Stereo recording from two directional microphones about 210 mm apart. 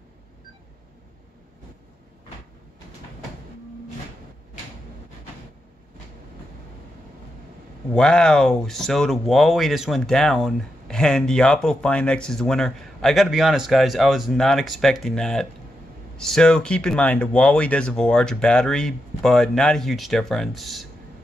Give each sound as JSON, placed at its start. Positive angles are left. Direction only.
{"t": 7.9, "sound": "speech", "side_deg": 5}